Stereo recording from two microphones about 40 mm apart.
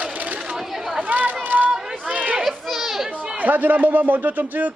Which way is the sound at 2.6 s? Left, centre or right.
Centre.